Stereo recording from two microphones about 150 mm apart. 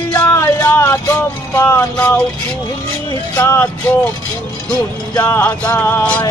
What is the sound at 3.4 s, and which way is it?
Music, 15° left (ahead or behind).